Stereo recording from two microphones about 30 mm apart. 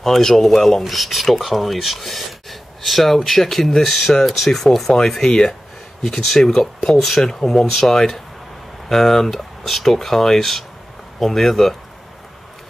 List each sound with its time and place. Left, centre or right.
0.0 s speech: centre
0.8 s speech: centre
4.5 s speech: left
6.0 s speech: centre